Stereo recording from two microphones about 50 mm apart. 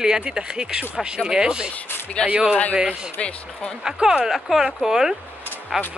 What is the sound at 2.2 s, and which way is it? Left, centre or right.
Speech, centre.